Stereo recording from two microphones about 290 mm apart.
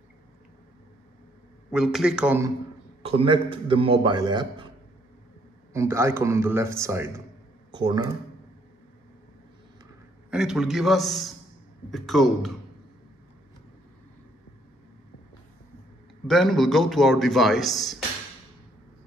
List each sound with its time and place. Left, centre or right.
1.7 s a man's voice: centre
3.0 s a man's voice: centre
5.7 s a man's voice: centre
10.3 s a man's voice: centre
16.3 s a man's voice: centre